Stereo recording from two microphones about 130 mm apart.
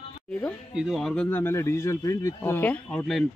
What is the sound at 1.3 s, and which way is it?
Speech, 20° left (ahead or behind).